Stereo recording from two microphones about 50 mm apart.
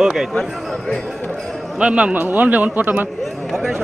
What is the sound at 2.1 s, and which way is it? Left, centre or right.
Speech, right.